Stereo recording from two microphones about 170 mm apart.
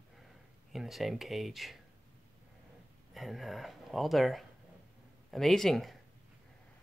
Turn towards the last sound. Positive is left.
turn(degrees=0)  # may be behind; listen again after turning